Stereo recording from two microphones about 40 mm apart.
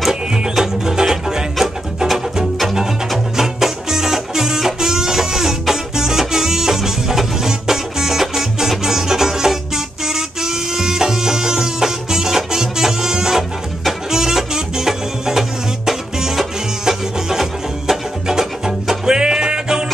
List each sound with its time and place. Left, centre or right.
0.1 s music: centre